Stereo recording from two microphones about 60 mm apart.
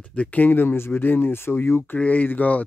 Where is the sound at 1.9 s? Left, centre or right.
Left.